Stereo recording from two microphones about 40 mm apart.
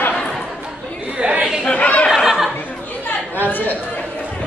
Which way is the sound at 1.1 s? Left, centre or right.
Right.